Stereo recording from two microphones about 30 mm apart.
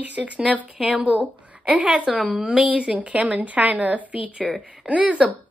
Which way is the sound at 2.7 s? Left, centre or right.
Right.